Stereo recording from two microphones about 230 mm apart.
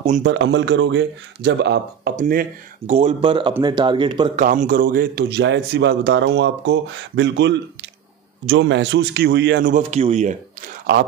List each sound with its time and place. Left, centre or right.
0.2 s a man's voice: right
2.9 s speech: right
4.4 s a man's voice: right
9.8 s speech: right